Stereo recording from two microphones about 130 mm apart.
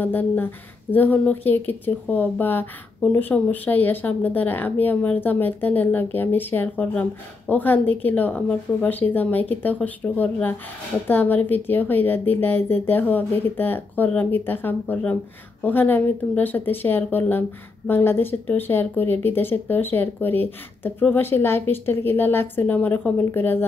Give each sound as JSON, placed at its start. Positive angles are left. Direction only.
{"t": 0.0, "sound": "speech", "side_deg": 15}